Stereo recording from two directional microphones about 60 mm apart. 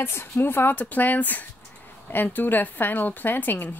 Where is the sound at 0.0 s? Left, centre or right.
Left.